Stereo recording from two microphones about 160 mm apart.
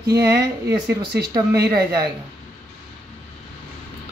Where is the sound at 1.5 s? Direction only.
75° right (ahead or behind).